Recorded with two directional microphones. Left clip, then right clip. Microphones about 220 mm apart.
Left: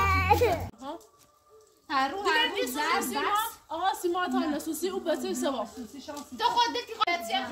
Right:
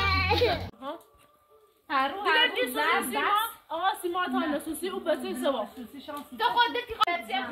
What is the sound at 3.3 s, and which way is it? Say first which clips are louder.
A woman's voice: right 2 dB; 5° right (ahead or behind).